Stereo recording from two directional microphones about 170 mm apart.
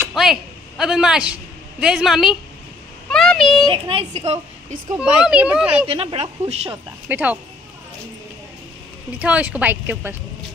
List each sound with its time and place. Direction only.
0.1 s a woman's voice: centre (ahead or behind)
3.1 s a sound: 5° left (ahead or behind)
3.7 s a woman's voice: 30° right (ahead or behind)
4.9 s a child's voice: 5° right (ahead or behind)
5.9 s a woman's voice: 35° right (ahead or behind)
6.5 s a woman's voice: 35° right (ahead or behind)
7.1 s a woman's voice: 10° right (ahead or behind)
9.2 s a woman's voice: 10° right (ahead or behind)